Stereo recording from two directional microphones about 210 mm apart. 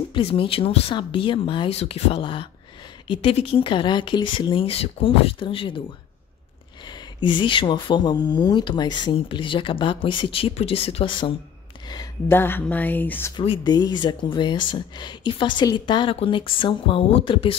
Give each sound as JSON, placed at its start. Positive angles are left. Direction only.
{"t": 0.1, "sound": "speech", "side_deg": 25}
{"t": 6.9, "sound": "speech", "side_deg": 25}
{"t": 13.4, "sound": "speech", "side_deg": 20}